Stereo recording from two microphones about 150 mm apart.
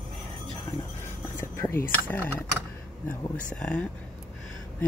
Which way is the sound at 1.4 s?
15° left (ahead or behind).